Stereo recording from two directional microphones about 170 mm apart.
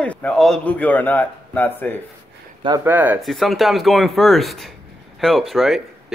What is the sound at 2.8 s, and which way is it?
Speech, 10° right (ahead or behind).